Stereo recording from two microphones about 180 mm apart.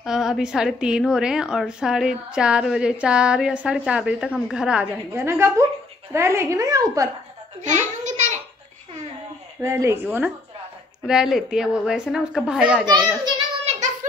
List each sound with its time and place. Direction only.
0.0 s a woman's voice: 5° right (ahead or behind); by 7.1 s 20° right (ahead or behind)
7.6 s a sound: 45° right (ahead or behind)
9.6 s a woman's voice: 15° right (ahead or behind)
13.7 s child singing: 40° right (ahead or behind)